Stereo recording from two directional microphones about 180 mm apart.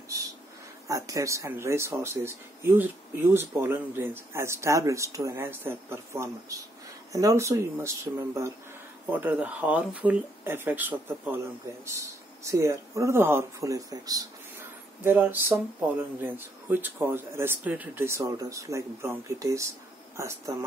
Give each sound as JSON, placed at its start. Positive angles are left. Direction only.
{"t": 0.8, "sound": "speech", "side_deg": -20}